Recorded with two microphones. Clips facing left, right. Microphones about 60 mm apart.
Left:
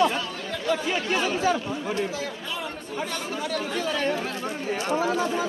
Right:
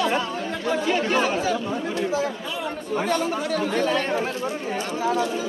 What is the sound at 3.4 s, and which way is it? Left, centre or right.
Speech, centre.